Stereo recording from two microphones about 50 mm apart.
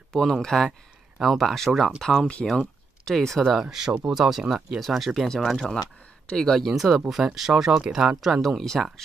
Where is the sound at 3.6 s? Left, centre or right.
Centre.